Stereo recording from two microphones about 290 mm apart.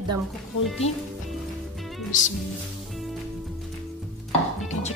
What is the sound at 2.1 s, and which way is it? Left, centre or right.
Music, left.